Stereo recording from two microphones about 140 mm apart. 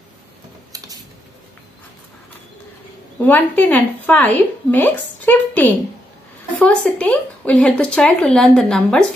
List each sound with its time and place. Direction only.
0.7 s tick-tock: 25° right (ahead or behind)
3.3 s a woman's voice: 10° left (ahead or behind)